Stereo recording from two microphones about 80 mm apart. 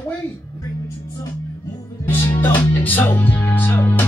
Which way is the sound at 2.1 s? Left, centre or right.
Left.